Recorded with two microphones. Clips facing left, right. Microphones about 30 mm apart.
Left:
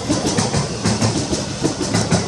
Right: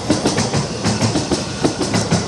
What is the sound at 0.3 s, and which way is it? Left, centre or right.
Train, centre.